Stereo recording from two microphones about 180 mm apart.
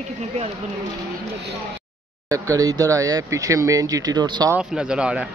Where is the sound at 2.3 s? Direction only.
20° right (ahead or behind).